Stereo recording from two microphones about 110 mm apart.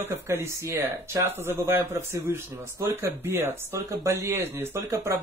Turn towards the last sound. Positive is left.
turn(degrees=-25)  # may be behind; listen again after turning